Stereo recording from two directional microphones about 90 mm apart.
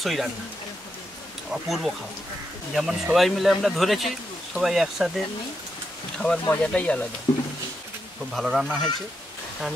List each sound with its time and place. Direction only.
0.0 s speech: centre (ahead or behind)
1.5 s speech: centre (ahead or behind)
6.1 s speech: 10° left (ahead or behind)
8.3 s speech: centre (ahead or behind)